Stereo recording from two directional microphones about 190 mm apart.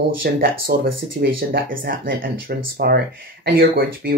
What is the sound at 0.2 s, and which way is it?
Speech, 50° right (ahead or behind).